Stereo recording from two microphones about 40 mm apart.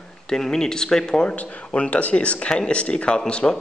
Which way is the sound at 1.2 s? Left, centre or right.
Left.